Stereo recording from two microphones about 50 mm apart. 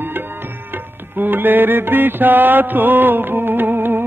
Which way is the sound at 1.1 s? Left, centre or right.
Right.